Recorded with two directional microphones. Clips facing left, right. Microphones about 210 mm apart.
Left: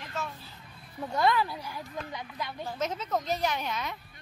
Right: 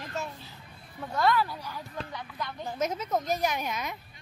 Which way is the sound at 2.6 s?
10° right (ahead or behind).